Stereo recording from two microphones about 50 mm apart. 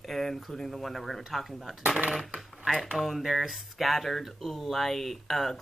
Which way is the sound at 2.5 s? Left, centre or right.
Centre.